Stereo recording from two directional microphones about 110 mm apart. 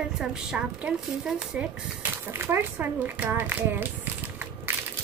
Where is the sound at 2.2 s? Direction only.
20° right (ahead or behind).